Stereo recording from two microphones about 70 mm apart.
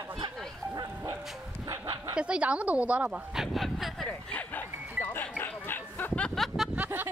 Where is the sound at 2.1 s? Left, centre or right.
Centre.